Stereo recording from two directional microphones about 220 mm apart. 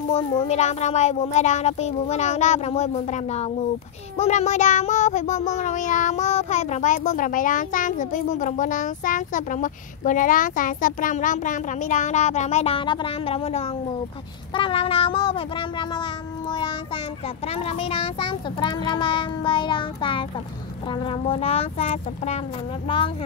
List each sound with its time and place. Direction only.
0.1 s child singing: 25° left (ahead or behind)
14.5 s a child's voice: 25° left (ahead or behind)